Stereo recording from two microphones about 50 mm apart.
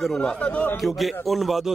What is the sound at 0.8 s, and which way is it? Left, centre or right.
Speech, centre.